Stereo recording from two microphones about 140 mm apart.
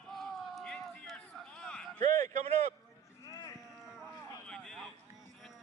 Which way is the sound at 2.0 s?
55° right (ahead or behind).